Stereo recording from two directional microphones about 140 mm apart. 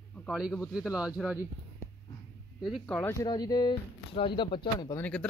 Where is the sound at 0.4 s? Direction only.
5° right (ahead or behind).